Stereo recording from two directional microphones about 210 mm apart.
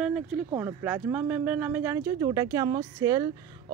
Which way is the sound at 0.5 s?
15° right (ahead or behind).